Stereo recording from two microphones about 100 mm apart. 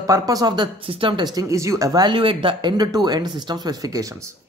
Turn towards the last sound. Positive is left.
turn(degrees=-35)  # may be behind; listen again after turning